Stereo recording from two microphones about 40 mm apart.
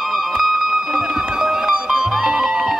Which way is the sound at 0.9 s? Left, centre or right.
Centre.